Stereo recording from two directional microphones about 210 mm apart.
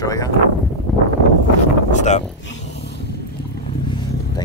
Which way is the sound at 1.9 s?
35° left (ahead or behind).